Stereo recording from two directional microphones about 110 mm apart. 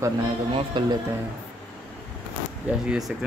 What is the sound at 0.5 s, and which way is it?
Speech, 45° right (ahead or behind).